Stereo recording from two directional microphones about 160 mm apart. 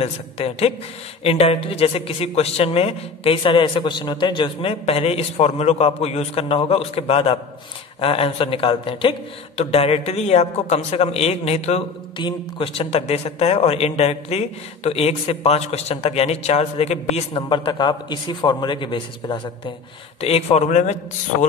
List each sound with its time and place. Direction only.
0.0 s a man's voice: 40° left (ahead or behind)
12.2 s a man's voice: 30° left (ahead or behind)
17.4 s a man's voice: 30° left (ahead or behind); by 21.5 s 50° left (ahead or behind)